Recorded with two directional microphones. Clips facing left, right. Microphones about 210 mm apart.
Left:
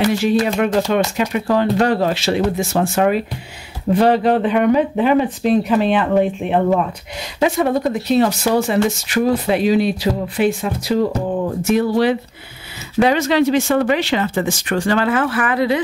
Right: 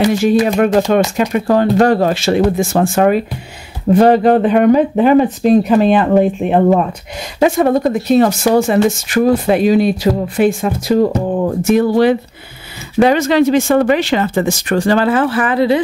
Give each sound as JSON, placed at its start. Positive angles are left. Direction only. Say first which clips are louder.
{"t": 0.6, "sound": "speech", "louder": "right 5 dB", "side_deg": -50}